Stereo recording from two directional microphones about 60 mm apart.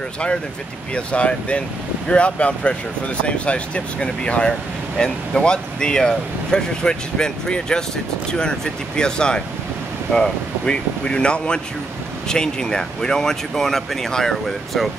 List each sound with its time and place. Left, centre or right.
0.9 s speech: centre